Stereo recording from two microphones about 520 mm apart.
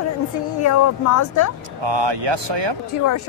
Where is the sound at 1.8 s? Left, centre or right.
Right.